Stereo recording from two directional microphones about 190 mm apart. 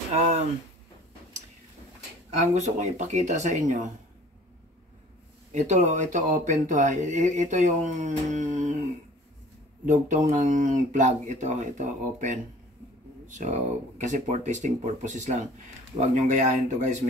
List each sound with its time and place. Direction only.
0.1 s speech: 35° right (ahead or behind)
2.4 s speech: 40° right (ahead or behind)
5.5 s speech: 40° right (ahead or behind)
9.8 s speech: 40° right (ahead or behind)